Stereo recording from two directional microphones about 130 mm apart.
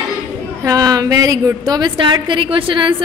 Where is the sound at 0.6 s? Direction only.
30° right (ahead or behind).